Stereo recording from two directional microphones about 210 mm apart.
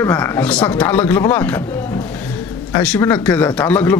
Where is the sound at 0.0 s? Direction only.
15° left (ahead or behind).